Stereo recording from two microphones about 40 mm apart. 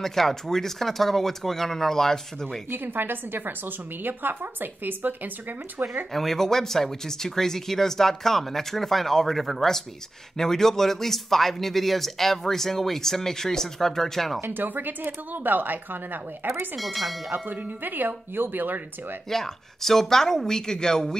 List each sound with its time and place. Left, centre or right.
0.0 s speech: centre
2.7 s a woman's voice: right
6.1 s speech: centre
14.4 s speech: right
16.7 s speech: centre
17.3 s a woman's voice: right
19.2 s speech: centre